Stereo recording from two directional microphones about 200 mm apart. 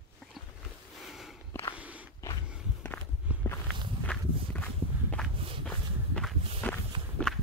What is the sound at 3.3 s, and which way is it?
Walk, 5° right (ahead or behind).